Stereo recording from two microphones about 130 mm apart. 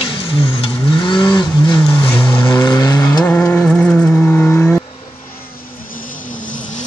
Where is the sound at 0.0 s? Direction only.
45° left (ahead or behind).